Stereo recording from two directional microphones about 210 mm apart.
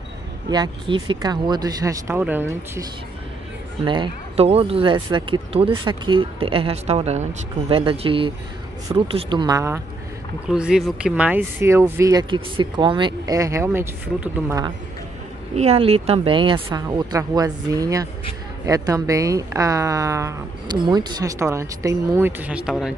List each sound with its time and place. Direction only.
0.5 s a woman's voice: 20° right (ahead or behind)
3.8 s speech: 25° right (ahead or behind)
10.5 s a woman's voice: 5° right (ahead or behind)
15.5 s a woman's voice: 30° right (ahead or behind); by 22.9 s 5° right (ahead or behind)